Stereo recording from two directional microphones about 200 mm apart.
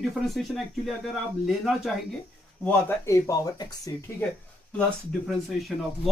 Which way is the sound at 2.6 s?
15° left (ahead or behind).